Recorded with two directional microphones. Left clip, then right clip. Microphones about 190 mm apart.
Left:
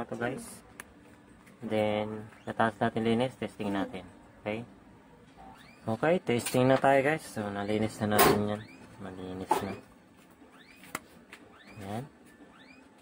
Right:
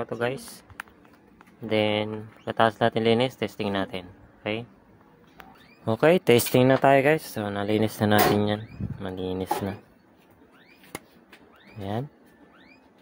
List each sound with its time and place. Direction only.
0.0 s speech: 60° right (ahead or behind)
1.7 s speech: 55° right (ahead or behind)
5.9 s speech: 55° right (ahead or behind)